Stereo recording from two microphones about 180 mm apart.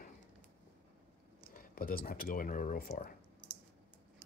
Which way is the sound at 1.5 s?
50° left (ahead or behind).